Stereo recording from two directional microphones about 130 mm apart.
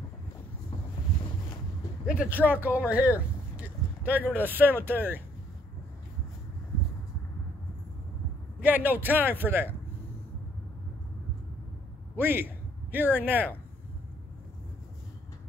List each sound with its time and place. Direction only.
2.4 s speech: 10° right (ahead or behind)
3.0 s speech: 20° left (ahead or behind)
3.5 s speech: 10° right (ahead or behind)
8.5 s speech: 10° right (ahead or behind)
12.2 s a man's voice: 15° right (ahead or behind)